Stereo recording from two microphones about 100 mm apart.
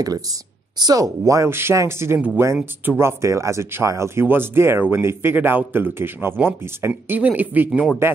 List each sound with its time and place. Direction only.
0.7 s speech: 40° right (ahead or behind)